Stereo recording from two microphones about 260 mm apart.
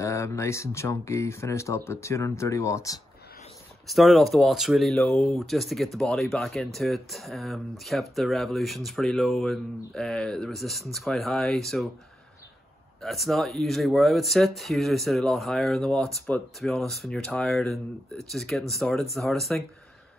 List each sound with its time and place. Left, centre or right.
0.0 s speech: centre
3.8 s speech: centre
13.0 s speech: centre